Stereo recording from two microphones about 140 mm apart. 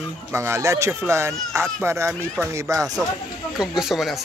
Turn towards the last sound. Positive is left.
turn(degrees=0)  # may be behind; listen again after turning